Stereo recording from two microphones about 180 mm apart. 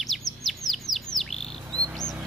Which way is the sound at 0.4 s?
Centre (ahead or behind).